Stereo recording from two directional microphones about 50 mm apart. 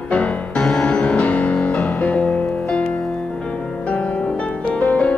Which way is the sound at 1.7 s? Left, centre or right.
Centre.